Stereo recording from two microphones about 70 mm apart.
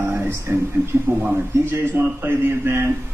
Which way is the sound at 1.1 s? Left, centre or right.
Right.